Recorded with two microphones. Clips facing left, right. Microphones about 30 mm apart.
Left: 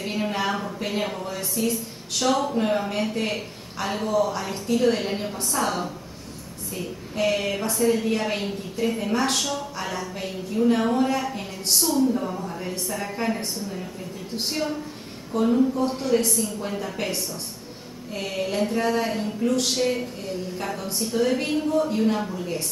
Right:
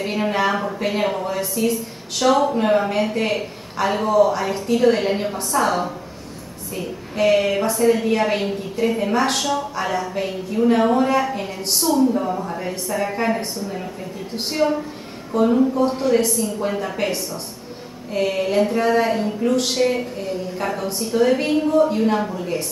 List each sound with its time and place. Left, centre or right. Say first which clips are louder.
0.0 s a sound: right 6 dB; centre
0.7 s a woman's voice: right 6 dB; centre
16.5 s a woman's voice: right 6 dB; centre